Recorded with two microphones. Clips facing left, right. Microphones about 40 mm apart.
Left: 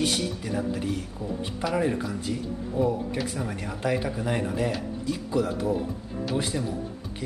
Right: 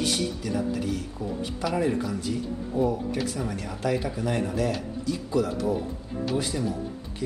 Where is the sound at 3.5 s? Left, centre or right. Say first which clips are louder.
Left 2 dB; left.